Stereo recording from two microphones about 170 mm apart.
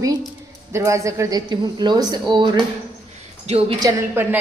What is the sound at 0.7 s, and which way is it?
A woman's voice, 20° right (ahead or behind).